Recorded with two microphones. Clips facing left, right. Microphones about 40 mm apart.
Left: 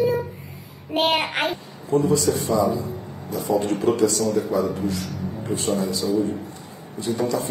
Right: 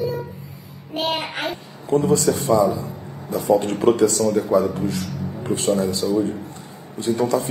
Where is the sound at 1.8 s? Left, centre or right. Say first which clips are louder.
Right 2 dB; right.